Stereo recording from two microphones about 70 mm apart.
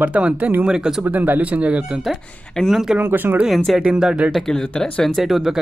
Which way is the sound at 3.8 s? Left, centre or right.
Centre.